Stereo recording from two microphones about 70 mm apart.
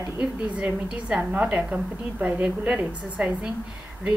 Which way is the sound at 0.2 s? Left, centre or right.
Centre.